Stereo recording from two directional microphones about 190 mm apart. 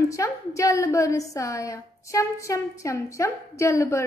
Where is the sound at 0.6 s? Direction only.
15° left (ahead or behind).